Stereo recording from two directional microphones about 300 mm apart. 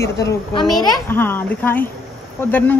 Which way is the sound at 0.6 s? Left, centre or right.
Centre.